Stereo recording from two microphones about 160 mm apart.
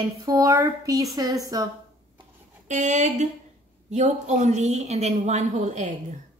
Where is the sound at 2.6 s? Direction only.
50° right (ahead or behind).